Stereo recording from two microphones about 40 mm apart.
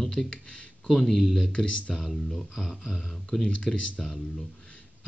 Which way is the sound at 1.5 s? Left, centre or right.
Left.